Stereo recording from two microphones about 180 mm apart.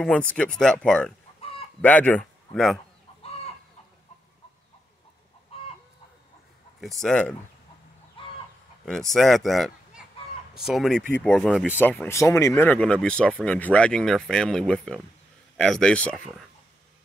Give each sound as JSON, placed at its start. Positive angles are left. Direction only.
{"t": 0.0, "sound": "speech", "side_deg": 5}
{"t": 3.2, "sound": "chicken", "side_deg": 35}
{"t": 5.5, "sound": "chicken", "side_deg": 30}
{"t": 6.8, "sound": "speech", "side_deg": 0}
{"t": 8.8, "sound": "speech", "side_deg": 5}